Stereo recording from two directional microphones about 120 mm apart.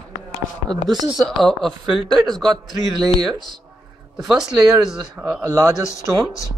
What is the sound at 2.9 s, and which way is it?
Speech, 35° right (ahead or behind).